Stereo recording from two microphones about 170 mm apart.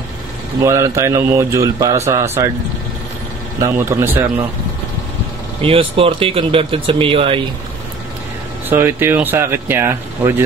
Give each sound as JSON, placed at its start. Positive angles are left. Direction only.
{"t": 0.7, "sound": "speech", "side_deg": -15}
{"t": 3.5, "sound": "speech", "side_deg": -15}
{"t": 5.6, "sound": "speech", "side_deg": -35}
{"t": 8.6, "sound": "speech", "side_deg": -15}